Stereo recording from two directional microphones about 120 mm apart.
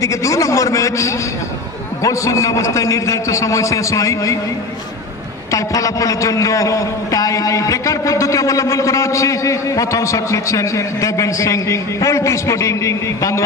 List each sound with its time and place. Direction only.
0.0 s a man's voice: 25° left (ahead or behind)
5.5 s a man's voice: 30° left (ahead or behind)